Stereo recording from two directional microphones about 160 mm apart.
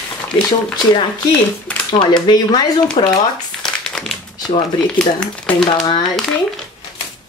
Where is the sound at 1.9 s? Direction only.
30° left (ahead or behind).